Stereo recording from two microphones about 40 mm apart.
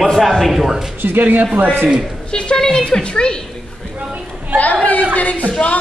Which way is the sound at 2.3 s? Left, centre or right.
Left.